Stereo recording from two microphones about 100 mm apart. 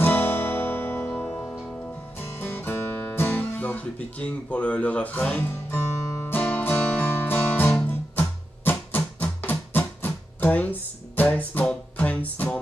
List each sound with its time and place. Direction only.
0.0 s music: 20° left (ahead or behind)